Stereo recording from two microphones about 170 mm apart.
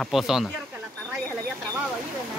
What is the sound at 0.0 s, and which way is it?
Speech, centre (ahead or behind).